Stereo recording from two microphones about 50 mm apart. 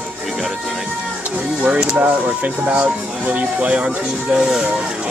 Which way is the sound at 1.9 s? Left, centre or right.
Right.